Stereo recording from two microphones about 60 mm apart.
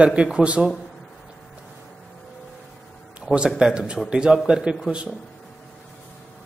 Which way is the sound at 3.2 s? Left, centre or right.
Centre.